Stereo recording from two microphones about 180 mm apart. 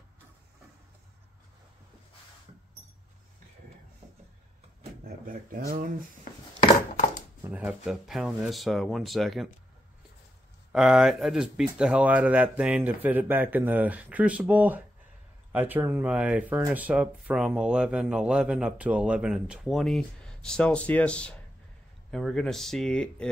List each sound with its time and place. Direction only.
5.0 s speech: 50° right (ahead or behind)
6.3 s a sound: 50° left (ahead or behind)
7.4 s speech: 5° right (ahead or behind)
10.7 s speech: 5° right (ahead or behind)